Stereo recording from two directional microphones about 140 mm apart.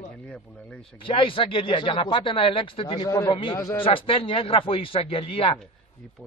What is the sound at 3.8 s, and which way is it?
Speech, 40° left (ahead or behind).